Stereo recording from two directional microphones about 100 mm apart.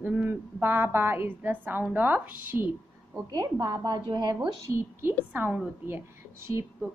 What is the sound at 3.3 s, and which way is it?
A woman's voice, 40° right (ahead or behind).